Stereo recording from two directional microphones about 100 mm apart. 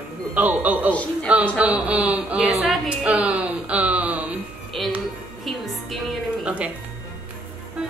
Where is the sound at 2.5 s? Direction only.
Centre (ahead or behind).